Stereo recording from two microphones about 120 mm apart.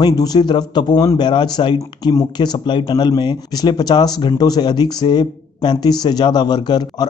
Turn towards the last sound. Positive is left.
turn(degrees=35)  # may be behind; listen again after turning